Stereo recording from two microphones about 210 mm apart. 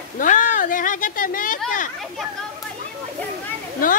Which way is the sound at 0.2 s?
40° left (ahead or behind).